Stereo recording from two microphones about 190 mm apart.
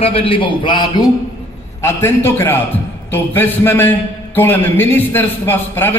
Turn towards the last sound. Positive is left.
turn(degrees=10)  # may be behind; listen again after turning